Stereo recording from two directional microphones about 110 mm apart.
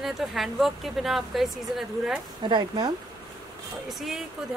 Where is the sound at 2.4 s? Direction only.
40° right (ahead or behind).